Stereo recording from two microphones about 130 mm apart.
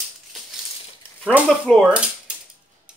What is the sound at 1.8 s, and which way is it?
Speech, 10° right (ahead or behind).